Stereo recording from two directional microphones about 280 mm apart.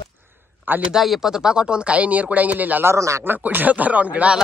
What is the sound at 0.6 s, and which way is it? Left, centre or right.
Speech, centre.